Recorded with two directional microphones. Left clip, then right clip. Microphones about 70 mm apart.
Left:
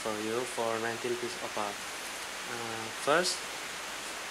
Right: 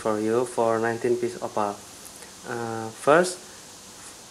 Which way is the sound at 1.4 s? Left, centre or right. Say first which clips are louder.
Right 7 dB; left.